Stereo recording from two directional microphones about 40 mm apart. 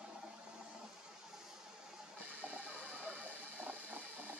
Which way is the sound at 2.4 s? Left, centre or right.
Right.